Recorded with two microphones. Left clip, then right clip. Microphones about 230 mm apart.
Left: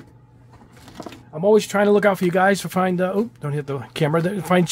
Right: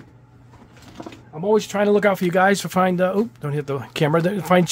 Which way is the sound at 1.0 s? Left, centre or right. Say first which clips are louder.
Left 1 dB; left.